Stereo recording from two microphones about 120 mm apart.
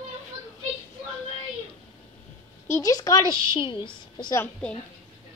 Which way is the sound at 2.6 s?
25° left (ahead or behind).